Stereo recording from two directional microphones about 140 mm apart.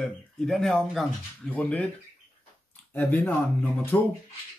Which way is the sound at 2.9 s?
15° left (ahead or behind).